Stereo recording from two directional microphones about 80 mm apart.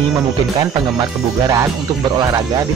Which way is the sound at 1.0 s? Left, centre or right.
Right.